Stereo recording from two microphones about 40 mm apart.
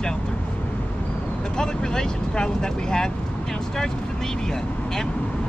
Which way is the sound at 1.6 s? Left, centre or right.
Centre.